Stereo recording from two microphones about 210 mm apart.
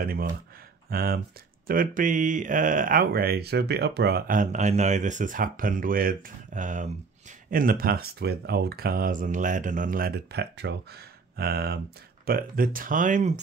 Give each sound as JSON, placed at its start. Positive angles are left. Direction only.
{"t": 0.0, "sound": "speech", "side_deg": -45}